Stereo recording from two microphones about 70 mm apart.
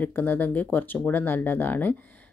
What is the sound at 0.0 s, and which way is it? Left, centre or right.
Speech, left.